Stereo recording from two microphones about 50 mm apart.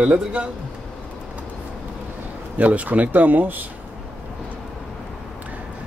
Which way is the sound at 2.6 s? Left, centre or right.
Right.